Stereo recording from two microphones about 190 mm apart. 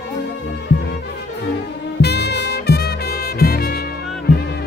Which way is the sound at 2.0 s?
60° left (ahead or behind).